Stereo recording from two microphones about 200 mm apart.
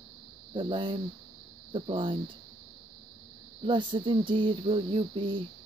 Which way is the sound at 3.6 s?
25° right (ahead or behind).